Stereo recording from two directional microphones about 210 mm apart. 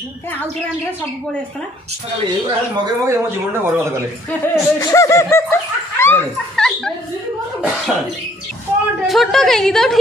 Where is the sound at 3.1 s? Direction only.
10° right (ahead or behind).